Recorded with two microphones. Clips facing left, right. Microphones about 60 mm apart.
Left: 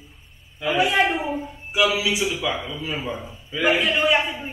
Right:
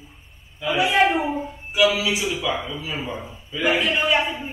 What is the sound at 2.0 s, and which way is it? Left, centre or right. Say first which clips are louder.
Speech: left 1 dB; right.